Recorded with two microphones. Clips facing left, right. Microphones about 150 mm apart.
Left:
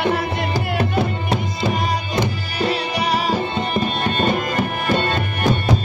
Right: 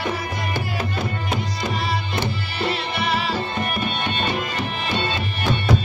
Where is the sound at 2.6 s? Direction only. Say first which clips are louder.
Left 4 dB; 40° left (ahead or behind).